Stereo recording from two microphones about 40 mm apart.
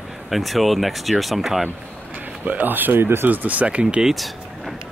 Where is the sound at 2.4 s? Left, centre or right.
Right.